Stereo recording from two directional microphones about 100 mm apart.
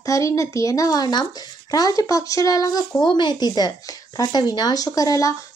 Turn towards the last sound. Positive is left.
turn(degrees=35)  # may be behind; listen again after turning